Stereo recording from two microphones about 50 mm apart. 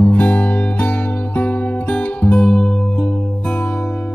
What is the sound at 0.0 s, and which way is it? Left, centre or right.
Music, left.